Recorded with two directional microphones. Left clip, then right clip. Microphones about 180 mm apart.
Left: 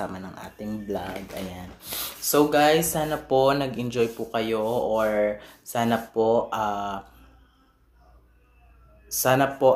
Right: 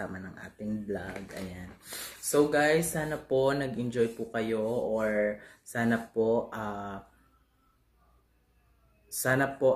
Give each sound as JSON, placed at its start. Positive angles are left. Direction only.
{"t": 0.0, "sound": "a sound", "side_deg": -15}
{"t": 2.3, "sound": "speech", "side_deg": -15}
{"t": 9.2, "sound": "speech", "side_deg": -20}